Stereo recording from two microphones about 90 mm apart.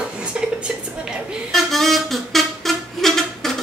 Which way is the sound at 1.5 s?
Centre (ahead or behind).